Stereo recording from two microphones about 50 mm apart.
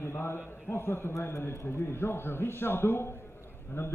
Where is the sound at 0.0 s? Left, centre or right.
Left.